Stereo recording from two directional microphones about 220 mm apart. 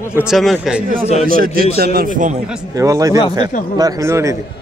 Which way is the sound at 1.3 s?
40° right (ahead or behind).